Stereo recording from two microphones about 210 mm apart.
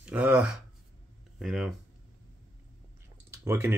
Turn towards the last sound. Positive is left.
turn(degrees=-15)  # may be behind; listen again after turning